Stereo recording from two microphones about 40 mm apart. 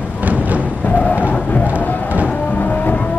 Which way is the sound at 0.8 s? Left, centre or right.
Left.